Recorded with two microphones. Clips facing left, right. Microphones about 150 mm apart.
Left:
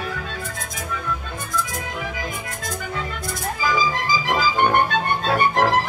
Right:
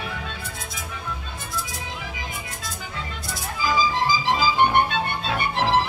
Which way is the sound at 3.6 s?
50° left (ahead or behind).